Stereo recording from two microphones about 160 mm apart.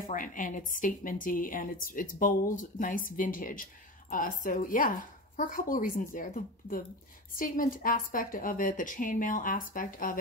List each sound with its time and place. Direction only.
0.0 s a woman's voice: 55° left (ahead or behind)